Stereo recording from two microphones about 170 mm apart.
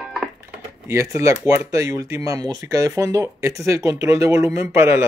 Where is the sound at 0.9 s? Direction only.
15° right (ahead or behind).